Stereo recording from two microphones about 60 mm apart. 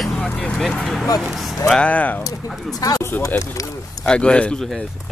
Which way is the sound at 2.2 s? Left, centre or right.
Left.